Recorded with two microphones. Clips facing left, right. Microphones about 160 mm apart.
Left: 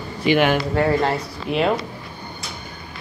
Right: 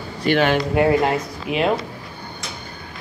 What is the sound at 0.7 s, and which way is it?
Speech, 15° right (ahead or behind).